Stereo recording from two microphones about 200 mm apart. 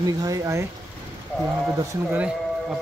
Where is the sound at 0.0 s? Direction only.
15° right (ahead or behind).